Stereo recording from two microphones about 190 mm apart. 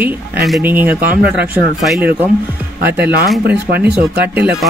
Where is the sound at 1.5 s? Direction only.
5° right (ahead or behind).